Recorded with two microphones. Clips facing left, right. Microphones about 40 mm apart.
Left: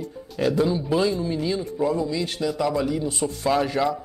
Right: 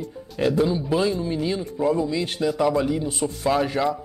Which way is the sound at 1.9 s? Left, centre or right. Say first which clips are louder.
Right 1 dB; centre.